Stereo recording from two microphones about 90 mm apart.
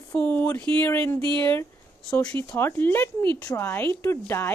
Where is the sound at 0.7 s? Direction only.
25° left (ahead or behind).